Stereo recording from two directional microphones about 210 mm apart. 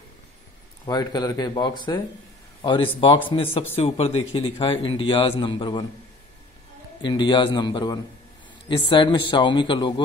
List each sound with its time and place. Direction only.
0.8 s speech: 20° left (ahead or behind)
7.0 s speech: 20° left (ahead or behind)